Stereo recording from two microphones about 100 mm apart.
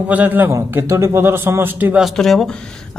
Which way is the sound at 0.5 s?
30° right (ahead or behind).